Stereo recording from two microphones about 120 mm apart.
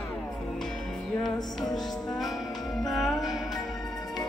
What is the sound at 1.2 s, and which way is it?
Music, centre (ahead or behind).